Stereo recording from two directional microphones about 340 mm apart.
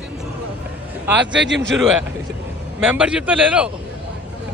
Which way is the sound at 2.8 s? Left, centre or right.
Centre.